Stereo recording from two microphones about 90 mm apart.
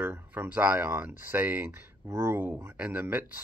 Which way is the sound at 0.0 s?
20° right (ahead or behind).